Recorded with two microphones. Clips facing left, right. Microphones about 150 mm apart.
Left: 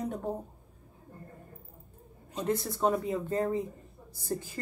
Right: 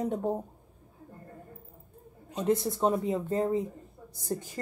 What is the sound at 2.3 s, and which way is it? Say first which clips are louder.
Speech: right 4 dB; 20° right (ahead or behind).